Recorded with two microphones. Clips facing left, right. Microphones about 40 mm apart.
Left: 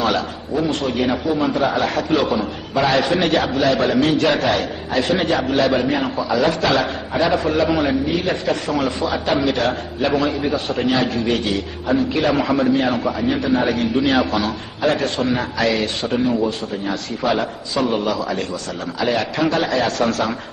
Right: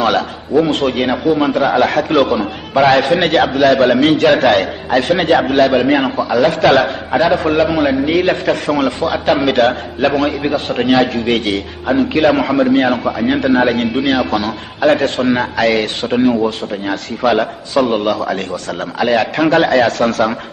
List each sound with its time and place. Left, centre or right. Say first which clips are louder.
0.0 s a man's voice: right 5 dB; right